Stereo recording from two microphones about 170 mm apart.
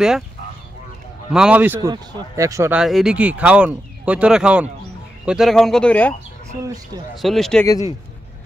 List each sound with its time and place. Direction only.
1.3 s speech: 5° right (ahead or behind)
2.7 s speech: centre (ahead or behind)
6.6 s speech: 20° right (ahead or behind)
7.2 s speech: centre (ahead or behind)